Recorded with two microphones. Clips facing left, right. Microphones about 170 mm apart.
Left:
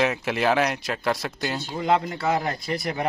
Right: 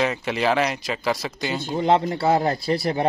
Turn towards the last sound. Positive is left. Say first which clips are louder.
# right 5 dB
turn(degrees=-30)  # may be behind; listen again after turning